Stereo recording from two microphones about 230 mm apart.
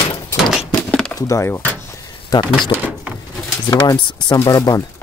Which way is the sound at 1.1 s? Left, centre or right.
Centre.